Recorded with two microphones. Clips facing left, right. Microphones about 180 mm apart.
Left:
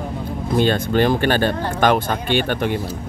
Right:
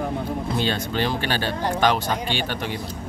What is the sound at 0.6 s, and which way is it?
Speech, 50° left (ahead or behind).